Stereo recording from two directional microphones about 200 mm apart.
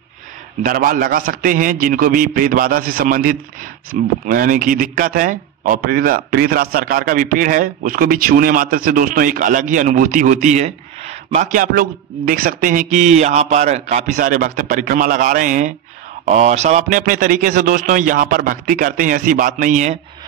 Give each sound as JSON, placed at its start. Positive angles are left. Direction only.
{"t": 0.6, "sound": "a man's voice", "side_deg": -45}